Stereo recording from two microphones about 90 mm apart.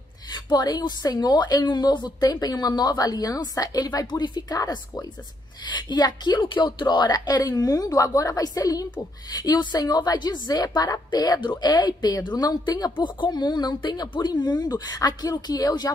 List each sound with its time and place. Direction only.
0.3 s a woman's voice: 50° left (ahead or behind)
12.9 s a woman's voice: 55° left (ahead or behind)